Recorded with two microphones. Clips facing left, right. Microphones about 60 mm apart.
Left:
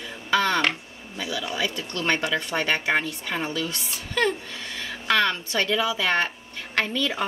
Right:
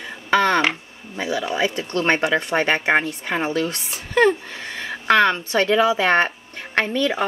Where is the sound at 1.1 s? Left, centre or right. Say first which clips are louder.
Right 6 dB; right.